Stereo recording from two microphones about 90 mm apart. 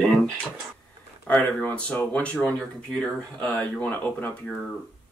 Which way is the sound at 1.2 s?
15° left (ahead or behind).